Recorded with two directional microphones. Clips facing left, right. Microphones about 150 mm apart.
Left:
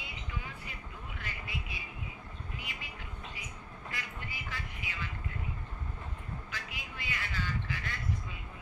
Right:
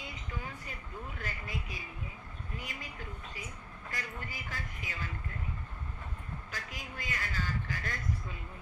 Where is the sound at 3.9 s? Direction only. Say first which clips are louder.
Right 2 dB; 45° right (ahead or behind).